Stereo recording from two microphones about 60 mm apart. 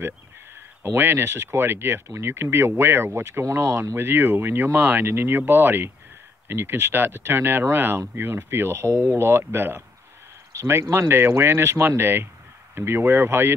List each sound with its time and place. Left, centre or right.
0.8 s speech: right
3.6 s speech: right
3.9 s speech: right
10.5 s speech: right